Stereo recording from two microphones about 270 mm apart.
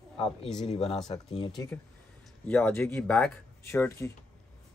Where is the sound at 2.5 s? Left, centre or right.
Centre.